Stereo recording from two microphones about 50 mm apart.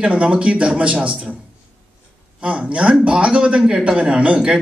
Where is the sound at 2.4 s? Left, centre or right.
Right.